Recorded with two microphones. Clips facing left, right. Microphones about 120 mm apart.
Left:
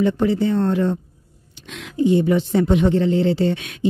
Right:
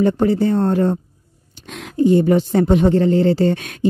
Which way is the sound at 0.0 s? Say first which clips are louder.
Right 3 dB; 45° right (ahead or behind).